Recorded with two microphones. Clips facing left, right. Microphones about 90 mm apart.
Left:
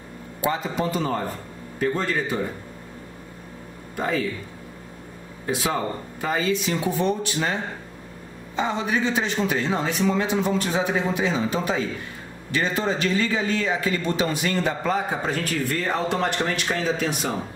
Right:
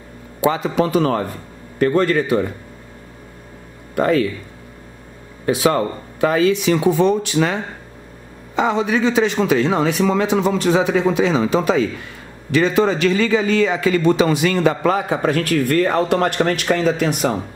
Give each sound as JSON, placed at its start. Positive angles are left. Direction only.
{"t": 0.4, "sound": "a man's voice", "side_deg": -90}
{"t": 3.9, "sound": "a man's voice", "side_deg": -75}
{"t": 5.4, "sound": "a man's voice", "side_deg": -75}
{"t": 8.5, "sound": "a man's voice", "side_deg": -90}